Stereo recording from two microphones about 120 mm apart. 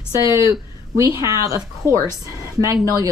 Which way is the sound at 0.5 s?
25° right (ahead or behind).